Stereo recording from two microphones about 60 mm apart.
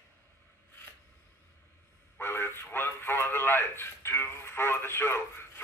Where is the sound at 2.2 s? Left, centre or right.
Left.